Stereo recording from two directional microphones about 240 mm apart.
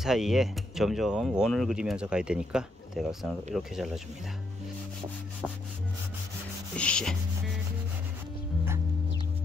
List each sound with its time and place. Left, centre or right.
0.0 s speech: centre
6.8 s speech: centre